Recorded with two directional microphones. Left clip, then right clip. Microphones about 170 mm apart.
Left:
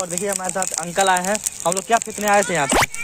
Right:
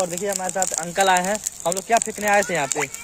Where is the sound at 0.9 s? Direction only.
5° right (ahead or behind).